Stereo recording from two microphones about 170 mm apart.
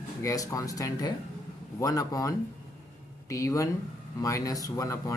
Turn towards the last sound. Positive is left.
turn(degrees=20)  # may be behind; listen again after turning